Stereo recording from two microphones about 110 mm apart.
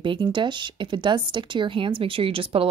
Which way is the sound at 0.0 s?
45° right (ahead or behind).